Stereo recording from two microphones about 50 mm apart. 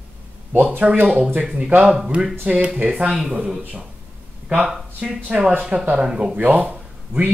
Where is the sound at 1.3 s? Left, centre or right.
Right.